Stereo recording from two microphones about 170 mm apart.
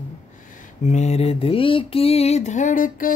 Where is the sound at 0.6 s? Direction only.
40° left (ahead or behind).